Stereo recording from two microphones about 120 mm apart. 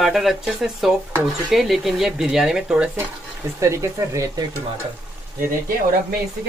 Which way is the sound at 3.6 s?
25° right (ahead or behind).